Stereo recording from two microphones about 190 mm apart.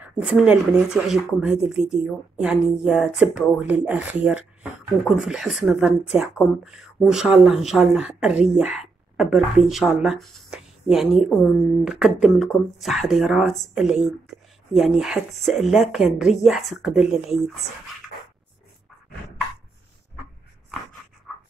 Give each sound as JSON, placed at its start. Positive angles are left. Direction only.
{"t": 0.0, "sound": "speech", "side_deg": -5}
{"t": 21.3, "sound": "dog", "side_deg": 5}